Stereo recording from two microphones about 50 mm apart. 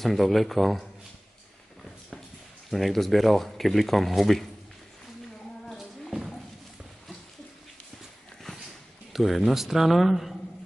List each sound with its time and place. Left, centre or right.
0.0 s speech: centre
2.7 s speech: centre
5.7 s a sound: centre
9.1 s speech: centre